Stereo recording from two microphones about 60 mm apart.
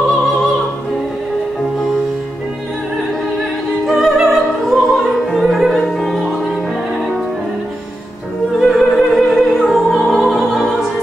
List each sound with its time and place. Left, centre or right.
3.8 s opera: centre
8.5 s opera: centre